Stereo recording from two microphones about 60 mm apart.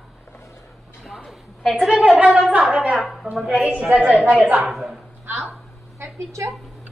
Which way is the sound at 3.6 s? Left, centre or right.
Right.